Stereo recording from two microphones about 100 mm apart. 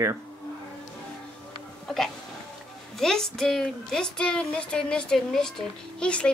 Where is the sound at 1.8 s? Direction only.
5° left (ahead or behind).